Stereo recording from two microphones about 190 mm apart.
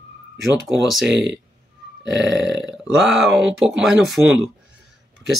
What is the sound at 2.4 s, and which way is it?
Speech, 65° right (ahead or behind).